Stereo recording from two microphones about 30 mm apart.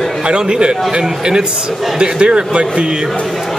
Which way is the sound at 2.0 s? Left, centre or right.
Right.